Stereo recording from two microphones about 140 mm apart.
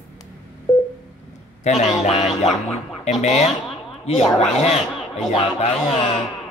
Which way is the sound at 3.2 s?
55° left (ahead or behind).